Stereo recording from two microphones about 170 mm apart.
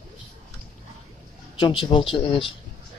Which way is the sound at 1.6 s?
30° left (ahead or behind).